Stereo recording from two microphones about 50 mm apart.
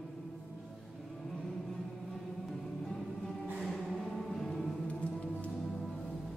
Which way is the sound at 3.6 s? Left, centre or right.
Centre.